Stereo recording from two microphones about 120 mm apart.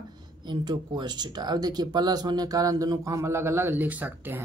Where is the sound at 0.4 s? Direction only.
40° right (ahead or behind).